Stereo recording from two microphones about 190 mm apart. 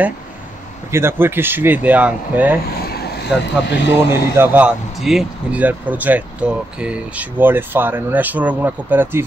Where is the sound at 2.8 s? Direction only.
55° left (ahead or behind).